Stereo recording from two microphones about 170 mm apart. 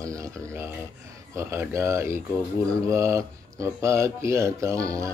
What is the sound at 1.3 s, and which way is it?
Speech, 15° right (ahead or behind).